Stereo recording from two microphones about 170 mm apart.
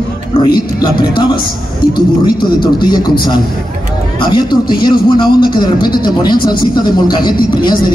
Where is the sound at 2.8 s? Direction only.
25° left (ahead or behind).